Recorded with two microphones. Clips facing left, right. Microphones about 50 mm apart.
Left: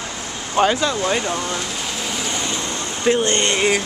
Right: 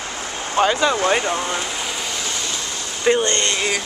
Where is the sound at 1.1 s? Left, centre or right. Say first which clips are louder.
Right 2 dB; centre.